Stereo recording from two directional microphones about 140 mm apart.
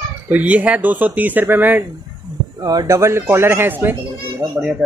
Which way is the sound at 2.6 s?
25° right (ahead or behind).